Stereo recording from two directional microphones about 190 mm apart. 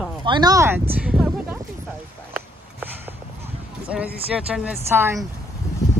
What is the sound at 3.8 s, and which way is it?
Speech, 5° right (ahead or behind).